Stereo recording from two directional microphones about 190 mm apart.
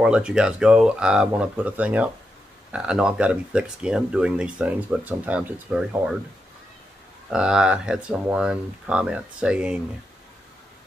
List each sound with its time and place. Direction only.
0.0 s speech: 5° right (ahead or behind)
7.2 s speech: 5° right (ahead or behind)